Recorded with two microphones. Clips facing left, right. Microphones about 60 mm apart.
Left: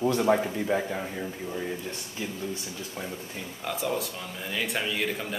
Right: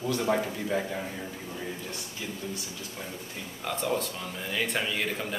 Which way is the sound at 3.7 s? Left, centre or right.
Centre.